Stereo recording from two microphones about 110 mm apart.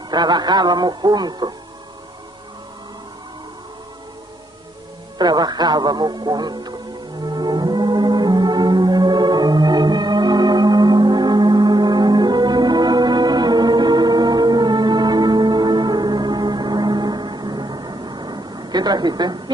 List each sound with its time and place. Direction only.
0.1 s speech: 40° right (ahead or behind)
5.2 s speech: 40° right (ahead or behind)
7.2 s music: 40° right (ahead or behind)